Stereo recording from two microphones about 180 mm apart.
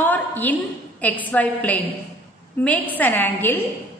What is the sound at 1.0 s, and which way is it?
A woman's voice, 10° left (ahead or behind).